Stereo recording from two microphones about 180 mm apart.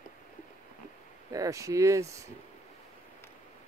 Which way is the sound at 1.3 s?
20° right (ahead or behind).